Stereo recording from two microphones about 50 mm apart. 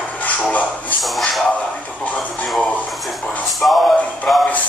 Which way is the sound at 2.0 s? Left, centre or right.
Left.